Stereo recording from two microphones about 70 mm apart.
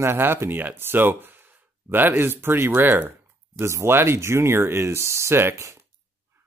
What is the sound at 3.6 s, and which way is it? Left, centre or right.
Speech, right.